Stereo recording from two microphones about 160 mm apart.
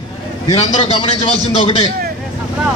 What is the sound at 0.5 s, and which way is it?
A man's voice, 40° left (ahead or behind).